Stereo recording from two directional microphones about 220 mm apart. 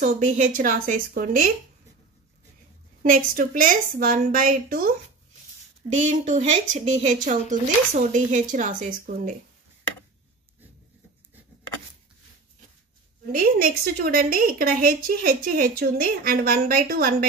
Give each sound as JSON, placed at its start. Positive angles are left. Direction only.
{"t": 0.0, "sound": "a woman's voice", "side_deg": -35}
{"t": 3.0, "sound": "a woman's voice", "side_deg": -40}
{"t": 13.3, "sound": "a woman's voice", "side_deg": -40}